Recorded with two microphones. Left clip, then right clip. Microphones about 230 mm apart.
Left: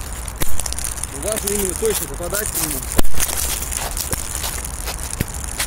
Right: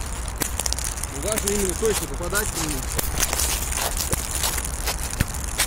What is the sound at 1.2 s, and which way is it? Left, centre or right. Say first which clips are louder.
Speech: left 2 dB; centre.